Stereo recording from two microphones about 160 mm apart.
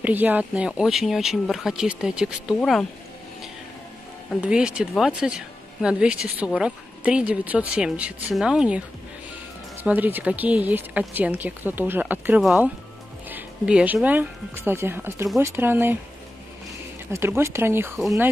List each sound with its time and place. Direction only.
0.0 s speech: 10° right (ahead or behind)
4.4 s speech: 5° right (ahead or behind)
9.8 s speech: 10° right (ahead or behind)
17.1 s speech: 15° right (ahead or behind)